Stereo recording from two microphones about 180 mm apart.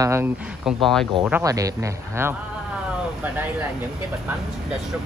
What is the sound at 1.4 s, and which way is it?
Speech, 20° right (ahead or behind).